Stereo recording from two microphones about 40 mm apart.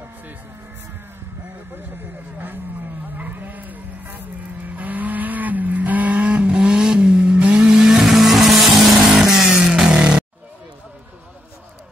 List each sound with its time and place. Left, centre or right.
2.3 s speech: right
3.2 s vehicle: right
7.3 s vehicle: right
7.6 s vehicle: centre
8.0 s vehicle: centre
9.6 s a sound: centre
9.9 s music: right